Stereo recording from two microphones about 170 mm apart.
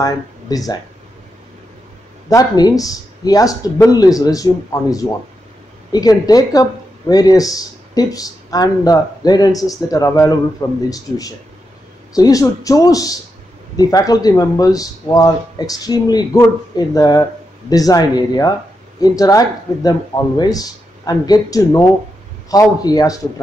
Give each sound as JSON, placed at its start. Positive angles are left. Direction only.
{"t": 0.0, "sound": "speech", "side_deg": 20}
{"t": 2.2, "sound": "speech", "side_deg": 20}